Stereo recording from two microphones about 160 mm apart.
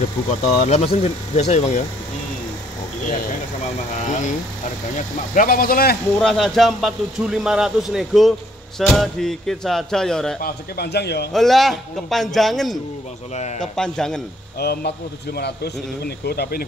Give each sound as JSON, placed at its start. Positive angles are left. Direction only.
{"t": 0.3, "sound": "speech", "side_deg": 45}
{"t": 3.1, "sound": "speech", "side_deg": 55}
{"t": 6.1, "sound": "speech", "side_deg": 5}
{"t": 10.4, "sound": "speech", "side_deg": 90}
{"t": 11.3, "sound": "speech", "side_deg": 0}
{"t": 14.6, "sound": "speech", "side_deg": 85}